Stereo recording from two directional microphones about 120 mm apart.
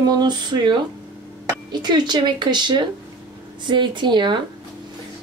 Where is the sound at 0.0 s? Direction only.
35° right (ahead or behind).